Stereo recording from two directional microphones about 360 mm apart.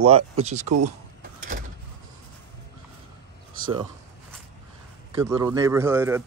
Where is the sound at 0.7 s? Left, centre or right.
Right.